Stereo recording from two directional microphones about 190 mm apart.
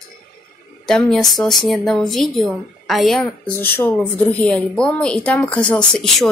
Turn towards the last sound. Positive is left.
turn(degrees=0)  # may be behind; listen again after turning